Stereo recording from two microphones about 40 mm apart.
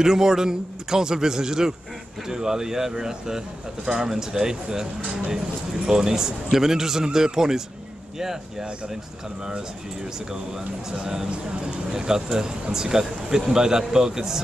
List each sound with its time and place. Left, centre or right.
0.0 s speech: centre
5.9 s speech: centre
11.2 s speech: right
11.9 s speech: centre